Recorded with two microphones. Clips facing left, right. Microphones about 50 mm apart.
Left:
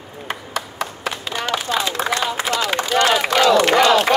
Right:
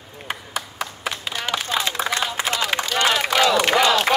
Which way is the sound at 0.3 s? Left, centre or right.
Centre.